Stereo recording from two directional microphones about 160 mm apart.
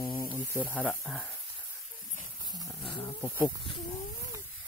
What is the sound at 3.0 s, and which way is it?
Speech, 10° left (ahead or behind).